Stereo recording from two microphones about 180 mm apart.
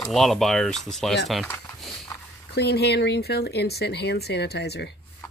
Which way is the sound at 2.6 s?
65° left (ahead or behind).